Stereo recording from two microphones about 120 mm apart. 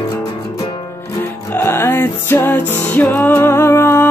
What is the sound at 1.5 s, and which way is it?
Music, 20° left (ahead or behind).